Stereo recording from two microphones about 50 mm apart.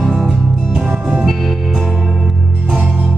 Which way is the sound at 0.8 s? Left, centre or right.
Right.